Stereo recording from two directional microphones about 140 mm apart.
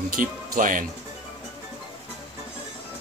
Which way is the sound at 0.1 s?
75° right (ahead or behind).